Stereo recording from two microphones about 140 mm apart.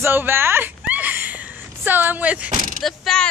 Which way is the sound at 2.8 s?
Centre (ahead or behind).